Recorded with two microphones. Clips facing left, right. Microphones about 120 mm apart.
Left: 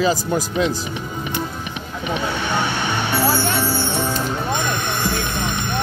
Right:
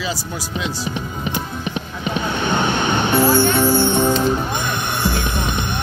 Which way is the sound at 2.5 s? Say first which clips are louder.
Right 5 dB; 20° right (ahead or behind).